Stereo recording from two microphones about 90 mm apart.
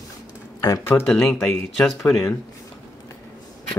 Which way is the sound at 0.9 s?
20° left (ahead or behind).